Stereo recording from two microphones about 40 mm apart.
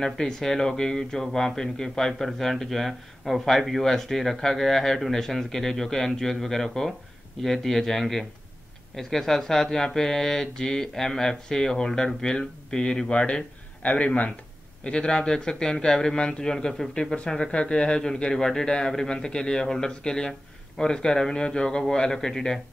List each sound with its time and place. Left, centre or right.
0.0 s a man's voice: centre
16.9 s a man's voice: left